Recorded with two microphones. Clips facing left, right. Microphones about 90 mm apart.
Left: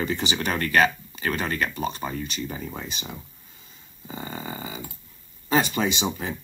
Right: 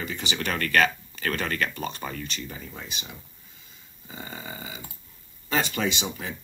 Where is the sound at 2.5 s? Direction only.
45° left (ahead or behind).